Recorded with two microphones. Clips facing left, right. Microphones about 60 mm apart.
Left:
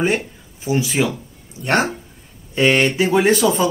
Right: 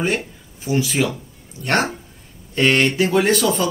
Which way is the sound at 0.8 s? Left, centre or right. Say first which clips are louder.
Left 1 dB; centre.